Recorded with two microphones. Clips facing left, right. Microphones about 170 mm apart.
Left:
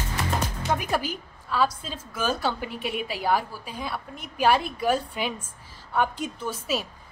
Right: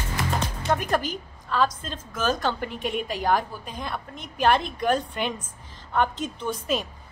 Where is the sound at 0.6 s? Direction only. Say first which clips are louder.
Right 3 dB; 5° left (ahead or behind).